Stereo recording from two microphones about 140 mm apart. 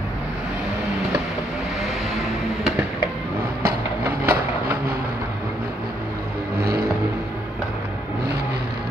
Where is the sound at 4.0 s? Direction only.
15° right (ahead or behind).